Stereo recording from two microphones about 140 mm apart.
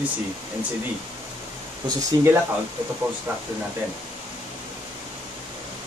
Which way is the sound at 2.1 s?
30° right (ahead or behind).